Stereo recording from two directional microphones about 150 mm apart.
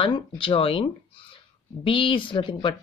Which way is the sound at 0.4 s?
35° left (ahead or behind).